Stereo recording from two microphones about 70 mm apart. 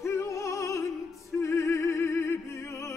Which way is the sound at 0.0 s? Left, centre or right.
Left.